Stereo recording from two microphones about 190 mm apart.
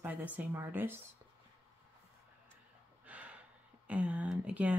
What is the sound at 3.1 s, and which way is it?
Gasp, 5° right (ahead or behind).